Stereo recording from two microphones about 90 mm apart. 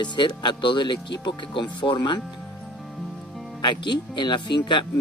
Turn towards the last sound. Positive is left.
turn(degrees=60)  # may be behind; listen again after turning